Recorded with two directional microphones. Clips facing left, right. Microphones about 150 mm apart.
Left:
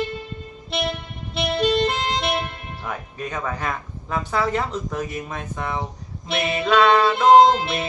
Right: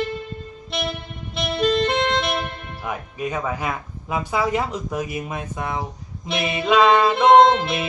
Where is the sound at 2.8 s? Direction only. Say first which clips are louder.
Right 3 dB; 10° right (ahead or behind).